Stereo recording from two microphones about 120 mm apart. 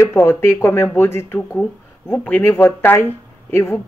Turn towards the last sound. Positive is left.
turn(degrees=20)  # may be behind; listen again after turning